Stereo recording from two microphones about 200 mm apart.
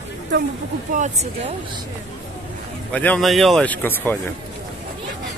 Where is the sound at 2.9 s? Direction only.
5° left (ahead or behind).